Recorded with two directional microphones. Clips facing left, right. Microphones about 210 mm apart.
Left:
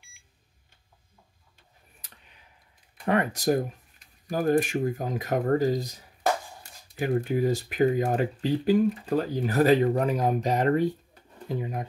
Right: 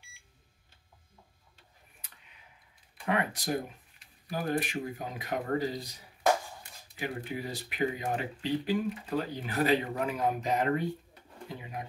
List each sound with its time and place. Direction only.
3.1 s speech: 40° left (ahead or behind)
7.0 s speech: 45° left (ahead or behind)